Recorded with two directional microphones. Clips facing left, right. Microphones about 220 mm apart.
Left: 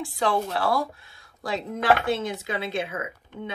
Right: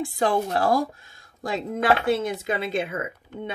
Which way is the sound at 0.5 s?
45° right (ahead or behind).